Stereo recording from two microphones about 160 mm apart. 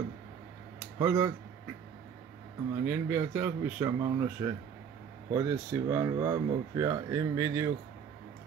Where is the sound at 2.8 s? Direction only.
15° right (ahead or behind).